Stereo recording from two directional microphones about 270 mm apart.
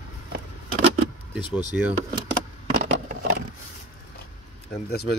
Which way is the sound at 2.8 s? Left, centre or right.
Right.